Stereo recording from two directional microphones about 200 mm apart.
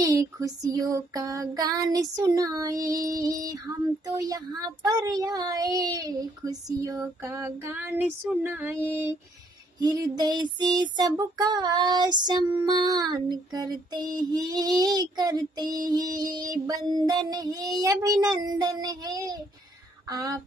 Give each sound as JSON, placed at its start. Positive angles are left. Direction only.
{"t": 0.0, "sound": "speech", "side_deg": -15}
{"t": 9.8, "sound": "child singing", "side_deg": -20}